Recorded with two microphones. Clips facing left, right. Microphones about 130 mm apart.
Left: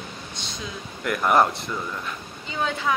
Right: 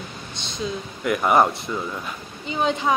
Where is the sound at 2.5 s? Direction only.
20° right (ahead or behind).